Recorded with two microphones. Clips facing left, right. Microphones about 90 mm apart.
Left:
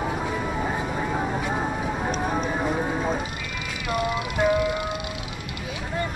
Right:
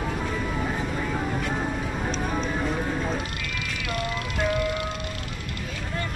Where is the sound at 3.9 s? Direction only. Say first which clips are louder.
Left 5 dB; 5° left (ahead or behind).